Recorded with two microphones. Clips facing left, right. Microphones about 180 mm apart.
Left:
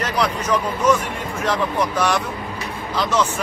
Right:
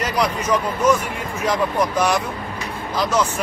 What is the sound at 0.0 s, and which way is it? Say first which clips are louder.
Speech: even; 10° right (ahead or behind).